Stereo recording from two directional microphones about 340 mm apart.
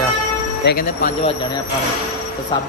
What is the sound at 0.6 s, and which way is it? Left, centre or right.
Speech, left.